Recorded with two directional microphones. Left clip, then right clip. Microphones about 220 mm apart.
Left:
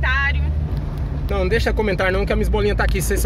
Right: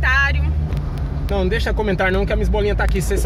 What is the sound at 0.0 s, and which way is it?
Vehicle, 30° right (ahead or behind).